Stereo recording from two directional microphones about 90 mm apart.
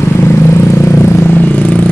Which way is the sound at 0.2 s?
30° left (ahead or behind).